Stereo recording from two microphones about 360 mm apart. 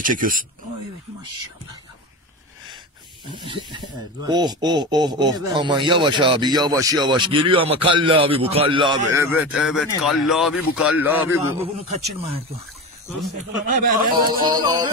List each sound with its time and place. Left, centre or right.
0.0 s speech: right
3.3 s speech: centre
13.8 s speech: centre